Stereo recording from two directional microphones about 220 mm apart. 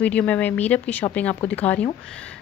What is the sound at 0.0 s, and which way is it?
A woman's voice, 5° left (ahead or behind).